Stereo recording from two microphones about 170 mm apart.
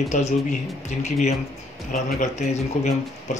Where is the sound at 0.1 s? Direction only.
45° left (ahead or behind).